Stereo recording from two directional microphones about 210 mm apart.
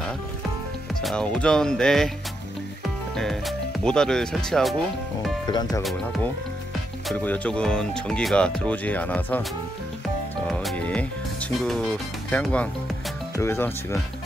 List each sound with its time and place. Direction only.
1.0 s speech: 5° left (ahead or behind)
3.2 s speech: centre (ahead or behind)
5.5 s speech: 20° left (ahead or behind)
5.8 s speech: centre (ahead or behind)
10.4 s music: centre (ahead or behind)
13.4 s speech: 10° left (ahead or behind)